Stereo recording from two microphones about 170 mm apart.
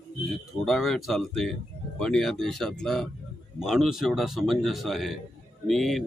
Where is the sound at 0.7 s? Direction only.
Centre (ahead or behind).